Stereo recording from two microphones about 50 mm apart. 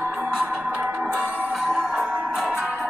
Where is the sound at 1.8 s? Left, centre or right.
Right.